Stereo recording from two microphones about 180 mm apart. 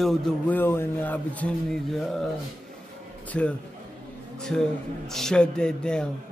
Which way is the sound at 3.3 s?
5° left (ahead or behind).